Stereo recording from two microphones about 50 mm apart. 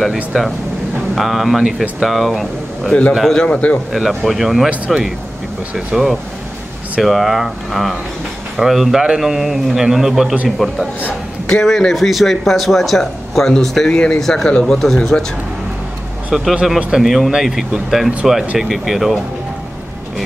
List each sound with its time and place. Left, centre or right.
0.0 s speech: centre
3.3 s a man's voice: centre
4.1 s a man's voice: centre
10.6 s speech: centre
13.9 s a man's voice: left
14.2 s speech: centre
16.6 s a man's voice: centre